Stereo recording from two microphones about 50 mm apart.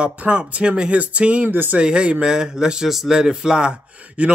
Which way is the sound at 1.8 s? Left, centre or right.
Centre.